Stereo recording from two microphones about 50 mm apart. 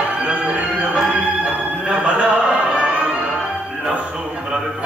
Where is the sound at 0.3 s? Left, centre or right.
Right.